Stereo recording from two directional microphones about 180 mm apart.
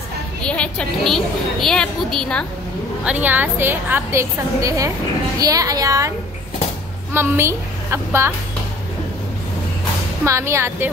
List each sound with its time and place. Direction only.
0.4 s a woman's voice: 5° left (ahead or behind)
3.1 s a woman's voice: 10° right (ahead or behind)
7.2 s a woman's voice: 15° right (ahead or behind)
10.2 s a woman's voice: 15° right (ahead or behind)